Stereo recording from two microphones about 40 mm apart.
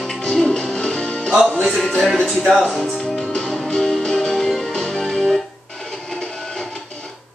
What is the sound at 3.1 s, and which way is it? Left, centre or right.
Music, centre.